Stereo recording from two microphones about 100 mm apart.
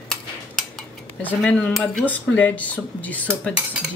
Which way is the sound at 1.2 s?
15° left (ahead or behind).